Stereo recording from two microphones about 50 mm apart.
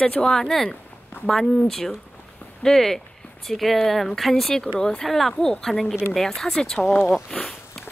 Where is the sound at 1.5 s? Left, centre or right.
Centre.